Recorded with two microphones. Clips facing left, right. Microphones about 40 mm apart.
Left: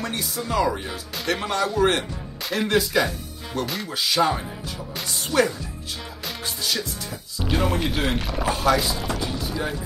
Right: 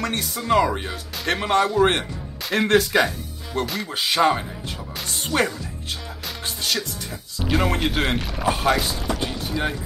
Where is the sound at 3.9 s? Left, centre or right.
Right.